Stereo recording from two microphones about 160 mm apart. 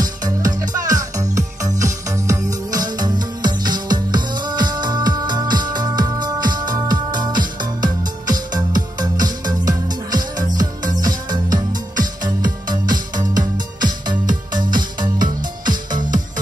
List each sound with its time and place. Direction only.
0.0 s music: 25° right (ahead or behind)